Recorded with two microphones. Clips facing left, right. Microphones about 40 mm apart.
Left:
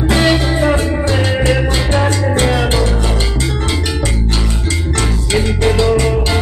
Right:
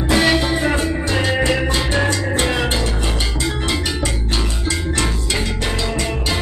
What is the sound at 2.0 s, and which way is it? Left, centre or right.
Music, left.